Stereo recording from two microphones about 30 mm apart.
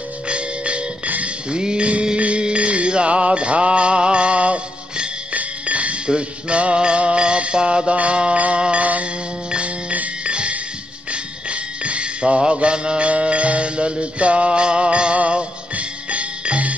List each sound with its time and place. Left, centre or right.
0.3 s music: right
1.0 s music: right
1.5 s music: right
2.1 s music: right
6.0 s music: right
7.9 s music: right
8.5 s mantra: right
9.0 s music: right
13.1 s music: right
15.1 s music: right